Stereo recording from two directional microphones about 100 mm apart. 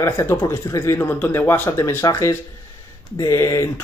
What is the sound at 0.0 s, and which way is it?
Speech, 25° left (ahead or behind).